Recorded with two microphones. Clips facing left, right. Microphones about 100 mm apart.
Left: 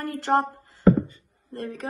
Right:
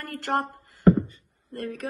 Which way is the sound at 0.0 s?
25° left (ahead or behind).